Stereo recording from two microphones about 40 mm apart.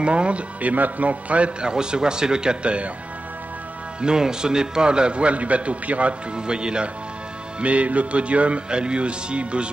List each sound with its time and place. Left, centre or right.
0.0 s a man's voice: right
4.0 s a man's voice: centre; by 6.1 s right
6.3 s a man's voice: right
7.6 s a man's voice: right